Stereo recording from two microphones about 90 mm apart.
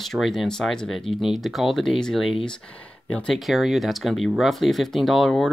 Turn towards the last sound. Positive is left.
turn(degrees=5)  # may be behind; listen again after turning